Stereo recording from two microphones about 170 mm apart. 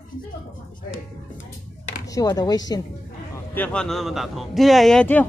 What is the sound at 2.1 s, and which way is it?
Speech, 20° left (ahead or behind).